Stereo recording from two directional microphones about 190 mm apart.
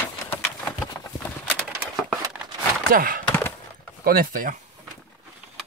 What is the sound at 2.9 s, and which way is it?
Speech, 50° right (ahead or behind).